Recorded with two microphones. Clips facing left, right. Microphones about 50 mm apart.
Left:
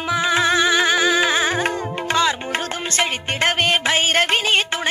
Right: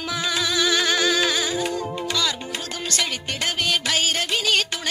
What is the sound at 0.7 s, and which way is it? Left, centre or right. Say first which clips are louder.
Music: left 4 dB; left.